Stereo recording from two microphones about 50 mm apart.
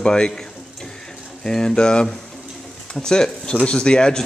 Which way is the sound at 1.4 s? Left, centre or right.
Centre.